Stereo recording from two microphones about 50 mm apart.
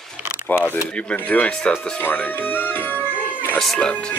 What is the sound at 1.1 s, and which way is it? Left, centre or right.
Speech, left.